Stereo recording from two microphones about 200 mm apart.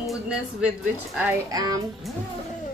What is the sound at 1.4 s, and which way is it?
Music, 20° right (ahead or behind).